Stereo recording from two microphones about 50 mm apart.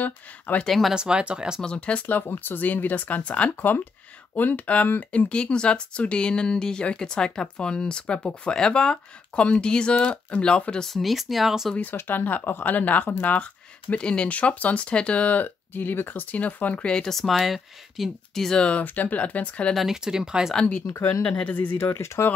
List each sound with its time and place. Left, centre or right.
0.0 s speech: left
0.7 s speech: centre
0.9 s speech: centre
1.6 s speech: left
3.2 s speech: left
10.9 s speech: centre
11.8 s speech: left
16.8 s speech: centre
17.1 s speech: centre
18.6 s speech: left
19.9 s speech: centre
20.6 s speech: left
21.7 s speech: left